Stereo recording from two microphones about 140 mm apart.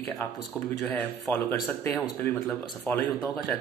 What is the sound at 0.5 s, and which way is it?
Speech, 10° left (ahead or behind).